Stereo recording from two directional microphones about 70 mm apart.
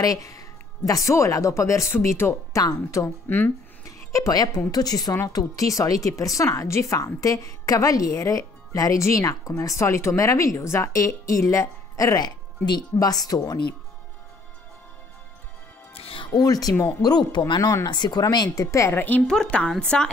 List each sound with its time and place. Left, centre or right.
0.0 s speech: left
2.5 s speech: left
3.3 s speech: left
4.1 s a woman's voice: left
7.2 s a woman's voice: left
16.3 s speech: left
17.0 s speech: left
17.8 s speech: left
18.3 s speech: left
18.9 s speech: left
19.2 s a woman's voice: centre